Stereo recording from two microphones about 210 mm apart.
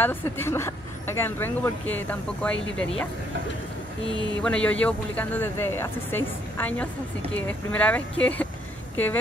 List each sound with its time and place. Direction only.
0.0 s speech: 10° left (ahead or behind)
4.1 s speech: 20° right (ahead or behind)
4.4 s a woman's voice: 5° left (ahead or behind)